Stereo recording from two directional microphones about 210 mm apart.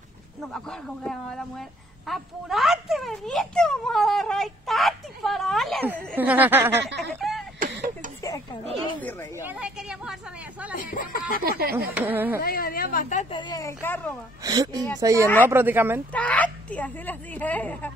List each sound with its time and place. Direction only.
0.5 s a child's voice: 5° left (ahead or behind)
7.0 s a sound: centre (ahead or behind)
7.6 s a sound: 40° right (ahead or behind)
9.4 s a child's voice: 5° right (ahead or behind)
10.7 s speech: 40° left (ahead or behind)
11.9 s speech: 10° right (ahead or behind)
12.4 s a woman's voice: 45° left (ahead or behind)
13.3 s a woman's voice: 20° left (ahead or behind)
14.4 s speech: 20° right (ahead or behind)
15.2 s a woman's voice: 10° left (ahead or behind)
15.5 s speech: 10° right (ahead or behind)
16.1 s a woman's voice: 5° left (ahead or behind)